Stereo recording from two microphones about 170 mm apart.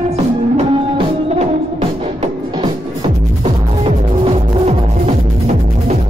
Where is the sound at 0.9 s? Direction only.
40° right (ahead or behind).